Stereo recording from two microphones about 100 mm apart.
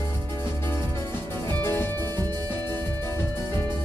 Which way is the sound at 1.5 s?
25° left (ahead or behind).